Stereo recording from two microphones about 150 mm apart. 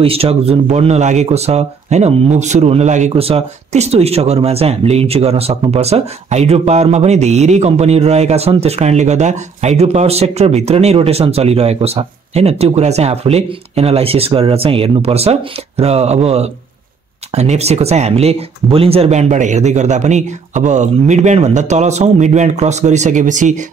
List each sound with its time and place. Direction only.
0.0 s speech: 40° right (ahead or behind)
17.4 s speech: 45° right (ahead or behind)